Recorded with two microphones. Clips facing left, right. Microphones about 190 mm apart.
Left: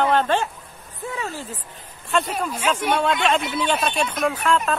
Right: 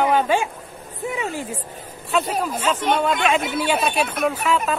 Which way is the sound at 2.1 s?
5° right (ahead or behind).